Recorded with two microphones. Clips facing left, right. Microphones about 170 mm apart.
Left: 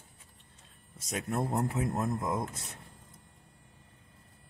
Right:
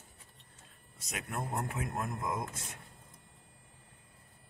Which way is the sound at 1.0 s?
40° left (ahead or behind).